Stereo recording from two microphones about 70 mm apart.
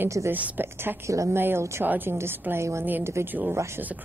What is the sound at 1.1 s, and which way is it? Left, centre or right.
Speech, right.